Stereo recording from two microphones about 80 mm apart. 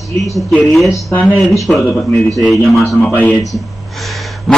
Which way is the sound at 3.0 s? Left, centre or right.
Left.